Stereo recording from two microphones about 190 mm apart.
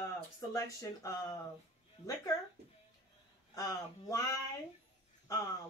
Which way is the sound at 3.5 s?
15° left (ahead or behind).